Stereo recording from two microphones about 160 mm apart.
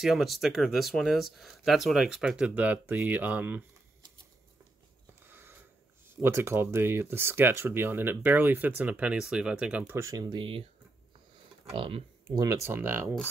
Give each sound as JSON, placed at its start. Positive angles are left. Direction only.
{"t": 0.0, "sound": "speech", "side_deg": 0}
{"t": 5.3, "sound": "a sound", "side_deg": -15}
{"t": 6.0, "sound": "speech", "side_deg": -15}
{"t": 11.7, "sound": "speech", "side_deg": -35}